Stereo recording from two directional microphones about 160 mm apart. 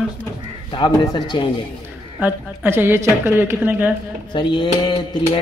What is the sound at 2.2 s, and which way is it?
A woman's voice, 15° right (ahead or behind).